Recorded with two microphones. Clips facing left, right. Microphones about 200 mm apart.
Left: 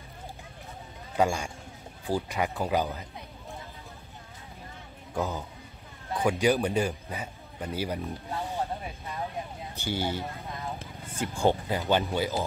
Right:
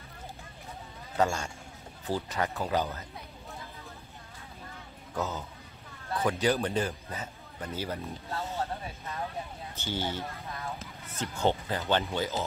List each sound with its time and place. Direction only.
1.1 s a man's voice: 10° left (ahead or behind)
5.1 s a man's voice: 10° left (ahead or behind)